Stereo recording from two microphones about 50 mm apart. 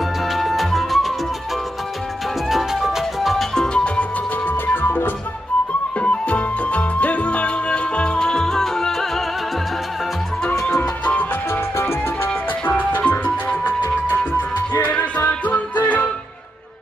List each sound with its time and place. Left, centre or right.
0.3 s music: centre
2.5 s music: centre
3.5 s music: centre
4.5 s music: left
5.9 s music: left; by 9.2 s centre
11.7 s music: left
12.6 s music: left